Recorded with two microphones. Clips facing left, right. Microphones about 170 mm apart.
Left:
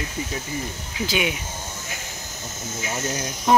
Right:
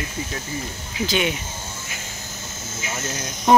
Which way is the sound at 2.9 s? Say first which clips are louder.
Left 2 dB; 15° left (ahead or behind).